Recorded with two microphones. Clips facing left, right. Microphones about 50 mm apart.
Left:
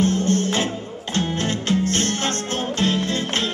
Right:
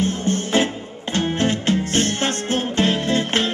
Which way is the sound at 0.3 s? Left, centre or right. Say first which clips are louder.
Right 1 dB; right.